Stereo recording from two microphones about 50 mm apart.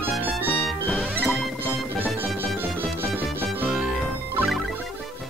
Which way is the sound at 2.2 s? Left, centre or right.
Right.